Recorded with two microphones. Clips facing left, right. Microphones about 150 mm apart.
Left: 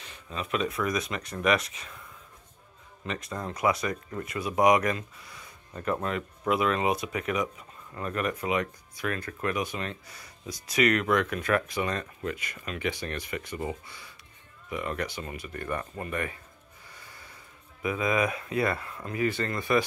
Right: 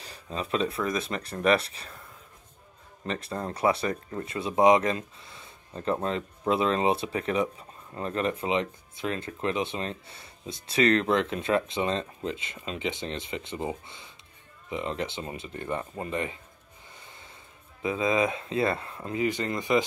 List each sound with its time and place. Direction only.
0.0 s speech: 35° right (ahead or behind)
3.1 s speech: 30° right (ahead or behind)
17.0 s snort: 20° right (ahead or behind)
17.8 s speech: 25° right (ahead or behind)